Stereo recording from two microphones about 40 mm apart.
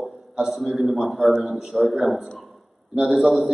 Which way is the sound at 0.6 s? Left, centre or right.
Centre.